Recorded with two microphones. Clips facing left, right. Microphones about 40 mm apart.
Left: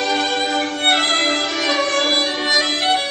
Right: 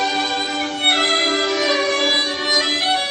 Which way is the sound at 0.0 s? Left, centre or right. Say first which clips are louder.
Left 1 dB; centre.